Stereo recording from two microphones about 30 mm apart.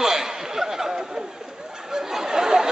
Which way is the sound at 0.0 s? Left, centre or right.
Centre.